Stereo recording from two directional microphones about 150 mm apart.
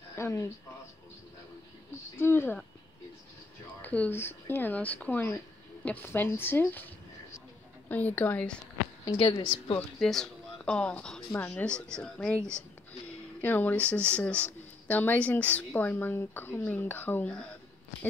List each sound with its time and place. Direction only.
0.1 s speech: 20° left (ahead or behind)
2.1 s speech: 15° left (ahead or behind)
3.8 s speech: 10° left (ahead or behind)
7.9 s speech: 10° left (ahead or behind)
9.0 s a woman's voice: 30° left (ahead or behind)
9.8 s speech: centre (ahead or behind)